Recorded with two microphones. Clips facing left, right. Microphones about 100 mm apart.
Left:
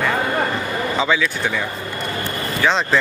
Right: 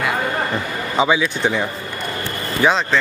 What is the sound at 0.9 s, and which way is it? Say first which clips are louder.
Speech: right 4 dB; 20° right (ahead or behind).